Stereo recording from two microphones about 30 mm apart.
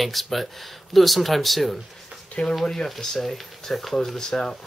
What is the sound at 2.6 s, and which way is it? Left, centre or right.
Speech, centre.